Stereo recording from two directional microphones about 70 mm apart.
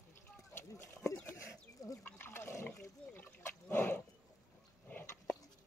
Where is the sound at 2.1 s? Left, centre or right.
Left.